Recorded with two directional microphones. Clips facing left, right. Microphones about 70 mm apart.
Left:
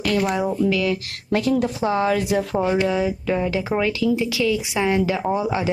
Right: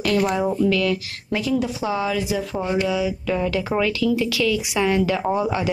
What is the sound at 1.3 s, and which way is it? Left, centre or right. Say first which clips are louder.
Speech: left 2 dB; left.